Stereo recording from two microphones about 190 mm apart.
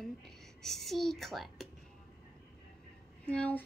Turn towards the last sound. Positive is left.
turn(degrees=5)  # may be behind; listen again after turning